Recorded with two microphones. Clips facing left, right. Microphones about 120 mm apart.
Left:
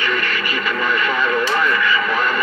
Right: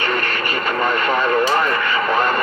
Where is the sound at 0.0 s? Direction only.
45° right (ahead or behind).